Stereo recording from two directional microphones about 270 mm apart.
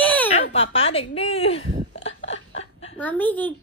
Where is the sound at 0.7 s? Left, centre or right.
Left.